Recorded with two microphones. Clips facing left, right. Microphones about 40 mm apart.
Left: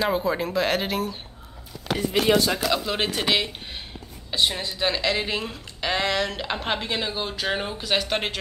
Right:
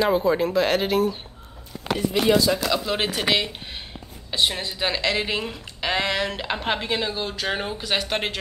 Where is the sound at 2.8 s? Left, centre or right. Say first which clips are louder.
Right 1 dB; centre.